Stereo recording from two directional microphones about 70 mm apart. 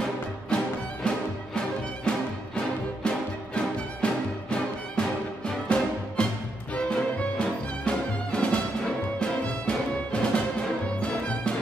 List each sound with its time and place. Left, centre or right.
0.5 s music: centre
2.0 s music: centre